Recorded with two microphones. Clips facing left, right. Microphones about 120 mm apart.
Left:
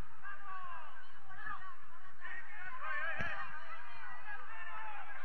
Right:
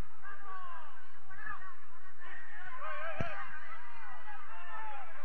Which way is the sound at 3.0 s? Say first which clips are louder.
Right 3 dB; 40° right (ahead or behind).